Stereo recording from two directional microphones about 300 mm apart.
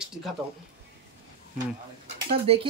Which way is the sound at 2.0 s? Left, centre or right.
Right.